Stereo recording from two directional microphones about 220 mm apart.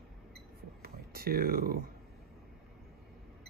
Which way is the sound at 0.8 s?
45° right (ahead or behind).